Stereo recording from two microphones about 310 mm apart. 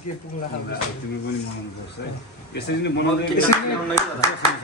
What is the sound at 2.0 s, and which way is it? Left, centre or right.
Speech, left.